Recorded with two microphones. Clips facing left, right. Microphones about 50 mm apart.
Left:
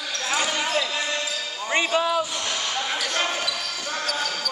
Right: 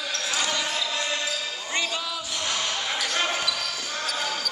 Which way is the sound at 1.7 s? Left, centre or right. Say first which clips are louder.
Left 8 dB; left.